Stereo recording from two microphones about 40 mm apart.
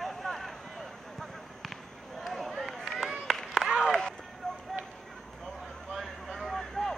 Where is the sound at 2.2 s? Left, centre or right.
Centre.